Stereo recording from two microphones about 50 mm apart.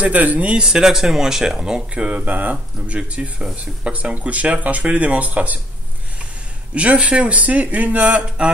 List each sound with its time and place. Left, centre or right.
0.0 s speech: right
0.7 s speech: centre; by 2.5 s right
2.5 s speech: right
6.7 s speech: right